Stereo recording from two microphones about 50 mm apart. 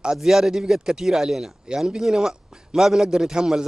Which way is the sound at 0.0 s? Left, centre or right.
Centre.